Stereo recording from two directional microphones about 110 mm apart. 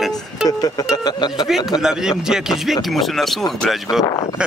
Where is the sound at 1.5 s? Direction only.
5° right (ahead or behind).